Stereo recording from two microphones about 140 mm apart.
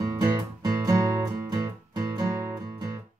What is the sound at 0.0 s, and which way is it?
Music, 25° right (ahead or behind).